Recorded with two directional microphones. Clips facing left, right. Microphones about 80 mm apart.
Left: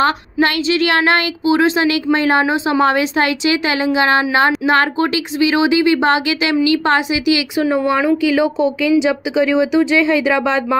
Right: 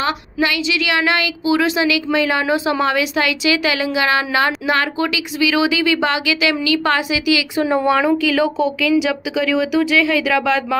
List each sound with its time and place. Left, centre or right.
0.0 s a woman's voice: left
2.4 s a woman's voice: left
7.7 s speech: centre